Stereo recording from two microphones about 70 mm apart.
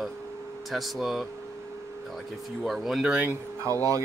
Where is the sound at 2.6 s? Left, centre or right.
Centre.